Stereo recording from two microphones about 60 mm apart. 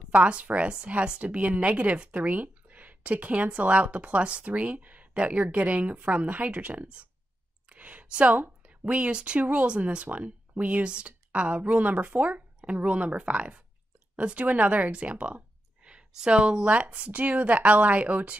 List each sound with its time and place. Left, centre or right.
0.1 s a woman's voice: centre